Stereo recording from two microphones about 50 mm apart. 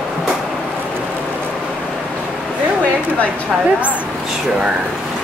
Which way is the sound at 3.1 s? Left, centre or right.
Left.